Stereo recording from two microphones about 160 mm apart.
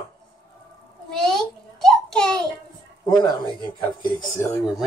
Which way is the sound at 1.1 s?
5° left (ahead or behind).